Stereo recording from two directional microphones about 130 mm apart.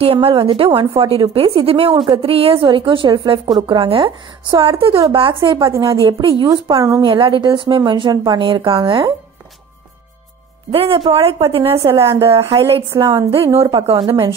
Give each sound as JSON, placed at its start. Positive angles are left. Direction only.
{"t": 0.0, "sound": "a woman's voice", "side_deg": -45}
{"t": 5.7, "sound": "a woman's voice", "side_deg": -30}
{"t": 6.0, "sound": "a woman's voice", "side_deg": -40}
{"t": 6.7, "sound": "a woman's voice", "side_deg": -25}
{"t": 10.7, "sound": "a woman's voice", "side_deg": -45}
{"t": 11.7, "sound": "a woman's voice", "side_deg": -25}
{"t": 13.7, "sound": "a woman's voice", "side_deg": -40}
{"t": 13.9, "sound": "a woman's voice", "side_deg": -30}